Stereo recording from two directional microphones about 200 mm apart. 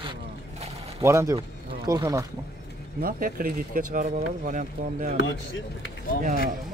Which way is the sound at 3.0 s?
45° right (ahead or behind).